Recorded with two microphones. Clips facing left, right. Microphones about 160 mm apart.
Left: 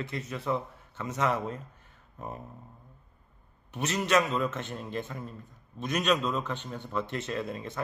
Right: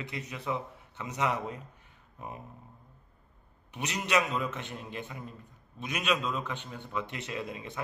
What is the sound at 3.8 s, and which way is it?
Speech, 15° right (ahead or behind).